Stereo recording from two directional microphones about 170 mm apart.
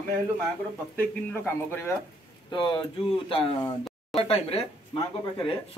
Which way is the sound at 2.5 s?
30° left (ahead or behind).